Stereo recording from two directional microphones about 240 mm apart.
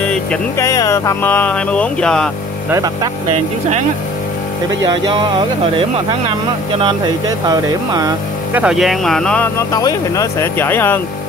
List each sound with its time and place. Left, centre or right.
0.1 s speech: centre
2.7 s speech: centre
4.8 s speech: centre
8.5 s speech: centre